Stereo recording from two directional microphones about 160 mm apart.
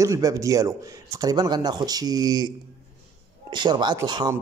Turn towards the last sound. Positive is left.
turn(degrees=-25)  # may be behind; listen again after turning